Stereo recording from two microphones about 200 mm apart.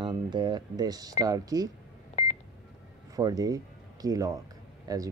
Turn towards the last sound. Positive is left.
turn(degrees=-15)  # may be behind; listen again after turning